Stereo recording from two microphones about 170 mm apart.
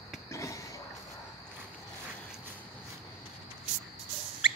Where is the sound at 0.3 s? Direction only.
20° left (ahead or behind).